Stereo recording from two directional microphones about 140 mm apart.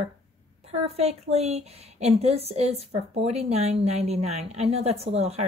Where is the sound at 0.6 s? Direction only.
45° right (ahead or behind).